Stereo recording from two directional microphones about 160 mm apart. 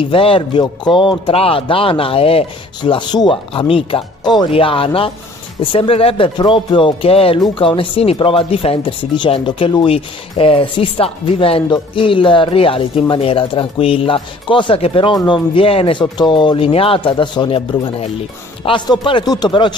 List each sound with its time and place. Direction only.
0.1 s speech: 35° left (ahead or behind)